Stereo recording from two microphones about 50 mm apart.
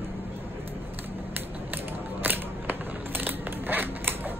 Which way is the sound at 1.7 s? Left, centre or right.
Right.